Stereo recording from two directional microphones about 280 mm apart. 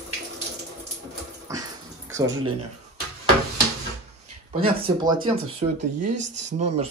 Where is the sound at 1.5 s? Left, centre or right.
Centre.